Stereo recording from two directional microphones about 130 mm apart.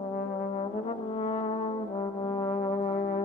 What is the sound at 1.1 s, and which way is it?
Brass instrument, 55° left (ahead or behind).